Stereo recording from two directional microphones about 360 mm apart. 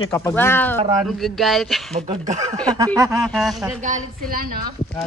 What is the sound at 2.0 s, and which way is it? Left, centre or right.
Speech, centre.